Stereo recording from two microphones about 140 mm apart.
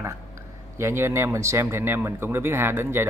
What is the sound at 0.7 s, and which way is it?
Speech, 20° right (ahead or behind).